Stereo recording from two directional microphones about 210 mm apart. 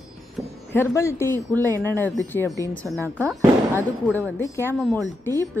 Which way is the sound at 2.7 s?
5° left (ahead or behind).